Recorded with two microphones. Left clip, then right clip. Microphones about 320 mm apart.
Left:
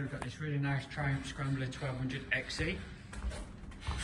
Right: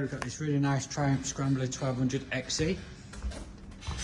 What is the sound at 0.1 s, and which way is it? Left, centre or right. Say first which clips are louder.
Speech: right 7 dB; centre.